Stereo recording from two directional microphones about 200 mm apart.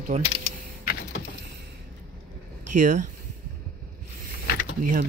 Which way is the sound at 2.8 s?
40° right (ahead or behind).